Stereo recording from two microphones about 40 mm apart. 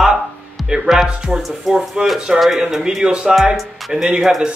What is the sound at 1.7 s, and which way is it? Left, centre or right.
Speech, centre.